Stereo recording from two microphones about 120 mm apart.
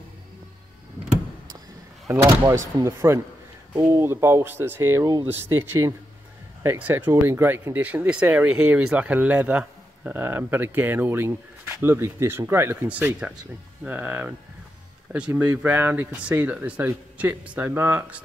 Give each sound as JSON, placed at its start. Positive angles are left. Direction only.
{"t": 2.0, "sound": "speech", "side_deg": -25}